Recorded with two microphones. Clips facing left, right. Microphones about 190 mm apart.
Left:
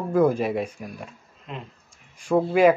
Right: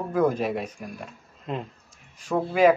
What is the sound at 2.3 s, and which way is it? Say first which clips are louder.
Speech: left 2 dB; 10° left (ahead or behind).